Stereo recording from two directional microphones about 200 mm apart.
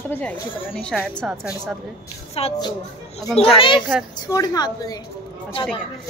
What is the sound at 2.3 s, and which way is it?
Speech, 30° left (ahead or behind).